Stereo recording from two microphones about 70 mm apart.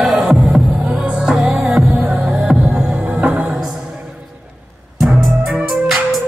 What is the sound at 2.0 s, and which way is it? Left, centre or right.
Music, right.